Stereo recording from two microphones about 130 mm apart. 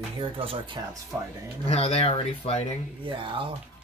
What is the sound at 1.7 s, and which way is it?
Speech, 50° left (ahead or behind).